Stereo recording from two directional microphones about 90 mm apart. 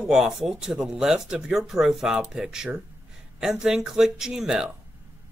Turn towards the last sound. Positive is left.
turn(degrees=-5)  # may be behind; listen again after turning